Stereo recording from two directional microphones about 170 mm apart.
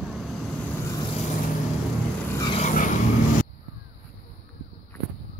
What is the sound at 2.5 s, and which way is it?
Vehicle, 50° left (ahead or behind).